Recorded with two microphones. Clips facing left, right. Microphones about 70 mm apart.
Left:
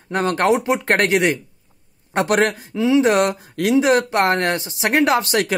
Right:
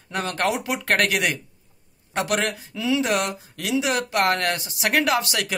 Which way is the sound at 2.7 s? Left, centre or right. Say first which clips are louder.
Left 7 dB; left.